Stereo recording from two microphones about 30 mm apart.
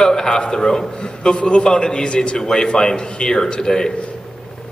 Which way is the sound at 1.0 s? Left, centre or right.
Left.